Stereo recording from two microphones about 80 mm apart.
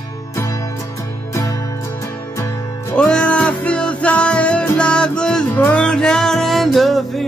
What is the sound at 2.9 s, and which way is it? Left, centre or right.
Music, centre.